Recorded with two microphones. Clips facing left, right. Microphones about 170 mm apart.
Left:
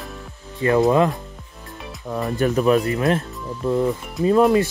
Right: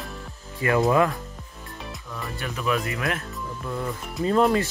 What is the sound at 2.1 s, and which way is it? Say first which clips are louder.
Speech: left 14 dB; 40° left (ahead or behind).